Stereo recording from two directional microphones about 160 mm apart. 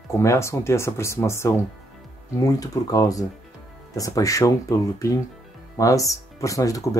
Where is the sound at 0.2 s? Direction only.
20° left (ahead or behind).